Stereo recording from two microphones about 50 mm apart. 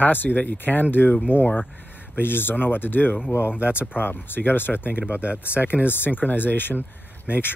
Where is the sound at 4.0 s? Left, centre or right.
Left.